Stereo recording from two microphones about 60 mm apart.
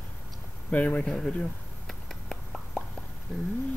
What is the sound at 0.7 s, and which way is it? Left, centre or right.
Speech, left.